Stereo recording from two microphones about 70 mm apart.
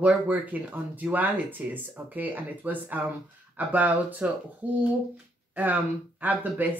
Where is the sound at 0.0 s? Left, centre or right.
Right.